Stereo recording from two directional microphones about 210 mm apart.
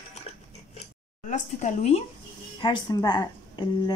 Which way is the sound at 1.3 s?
35° left (ahead or behind).